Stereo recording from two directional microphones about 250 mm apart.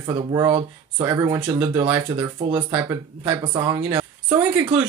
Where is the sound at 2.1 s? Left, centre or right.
Centre.